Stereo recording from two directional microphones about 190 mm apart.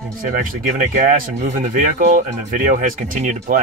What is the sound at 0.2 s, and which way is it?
Speech, 45° right (ahead or behind).